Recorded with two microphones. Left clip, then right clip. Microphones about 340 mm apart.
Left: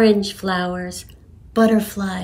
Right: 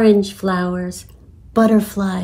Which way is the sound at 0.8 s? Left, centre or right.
Centre.